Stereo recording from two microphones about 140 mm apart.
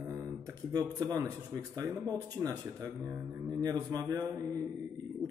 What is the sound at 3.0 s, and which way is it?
Mantra, 15° right (ahead or behind).